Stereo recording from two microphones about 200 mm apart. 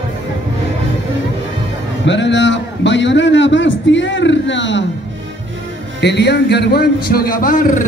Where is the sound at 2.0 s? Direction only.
60° left (ahead or behind).